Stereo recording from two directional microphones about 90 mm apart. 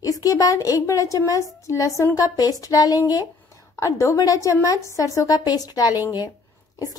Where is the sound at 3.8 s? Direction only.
35° left (ahead or behind).